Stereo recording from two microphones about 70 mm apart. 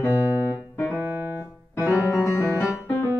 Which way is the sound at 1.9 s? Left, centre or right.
Left.